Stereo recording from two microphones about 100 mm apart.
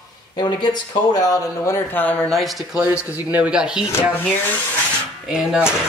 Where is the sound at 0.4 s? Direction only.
45° left (ahead or behind).